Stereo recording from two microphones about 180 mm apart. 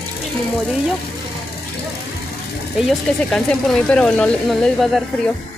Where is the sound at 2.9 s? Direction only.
Centre (ahead or behind).